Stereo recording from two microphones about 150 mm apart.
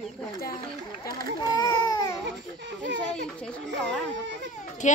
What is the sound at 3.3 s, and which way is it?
Speech, 5° left (ahead or behind).